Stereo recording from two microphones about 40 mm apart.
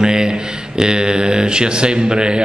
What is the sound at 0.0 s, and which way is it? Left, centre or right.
Speech, centre.